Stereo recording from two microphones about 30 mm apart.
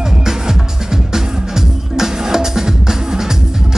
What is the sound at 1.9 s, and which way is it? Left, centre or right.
Music, centre.